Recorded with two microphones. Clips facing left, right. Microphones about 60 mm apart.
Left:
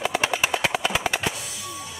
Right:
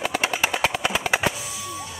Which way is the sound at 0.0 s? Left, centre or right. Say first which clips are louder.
Even; centre.